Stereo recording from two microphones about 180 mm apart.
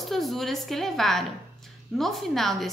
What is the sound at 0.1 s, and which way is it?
A woman's voice, centre (ahead or behind).